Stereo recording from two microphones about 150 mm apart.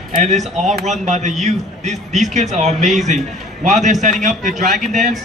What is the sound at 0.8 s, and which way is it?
Speech, 50° right (ahead or behind).